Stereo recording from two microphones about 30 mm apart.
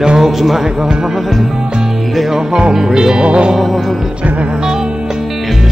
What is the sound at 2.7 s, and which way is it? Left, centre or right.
Music, right.